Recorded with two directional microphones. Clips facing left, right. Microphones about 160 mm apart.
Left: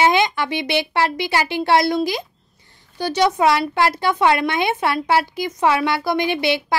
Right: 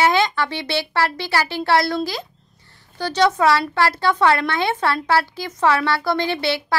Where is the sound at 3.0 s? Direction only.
10° left (ahead or behind).